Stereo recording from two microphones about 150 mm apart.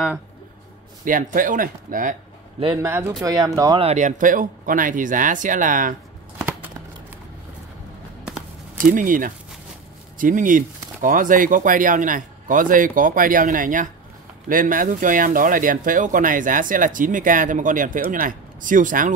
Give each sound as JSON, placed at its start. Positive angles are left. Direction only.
{"t": 1.0, "sound": "speech", "side_deg": -65}
{"t": 2.8, "sound": "speech", "side_deg": -20}
{"t": 3.8, "sound": "speech", "side_deg": -50}
{"t": 8.7, "sound": "speech", "side_deg": -65}